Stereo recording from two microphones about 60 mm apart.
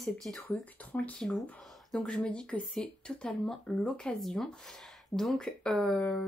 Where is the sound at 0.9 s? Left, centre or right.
Left.